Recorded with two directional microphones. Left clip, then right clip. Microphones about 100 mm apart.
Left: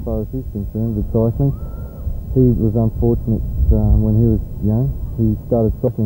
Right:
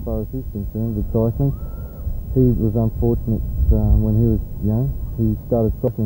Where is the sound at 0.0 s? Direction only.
20° left (ahead or behind).